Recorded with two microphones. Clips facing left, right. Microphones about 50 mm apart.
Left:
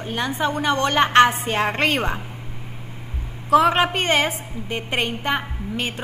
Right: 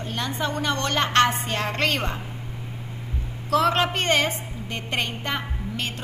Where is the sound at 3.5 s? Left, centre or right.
Centre.